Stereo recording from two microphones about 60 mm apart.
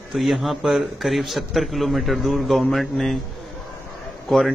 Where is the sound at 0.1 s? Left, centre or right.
Centre.